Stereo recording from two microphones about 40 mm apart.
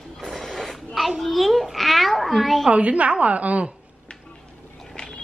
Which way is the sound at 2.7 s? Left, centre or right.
Right.